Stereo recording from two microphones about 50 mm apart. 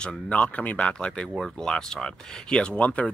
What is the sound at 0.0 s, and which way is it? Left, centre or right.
Speech, left.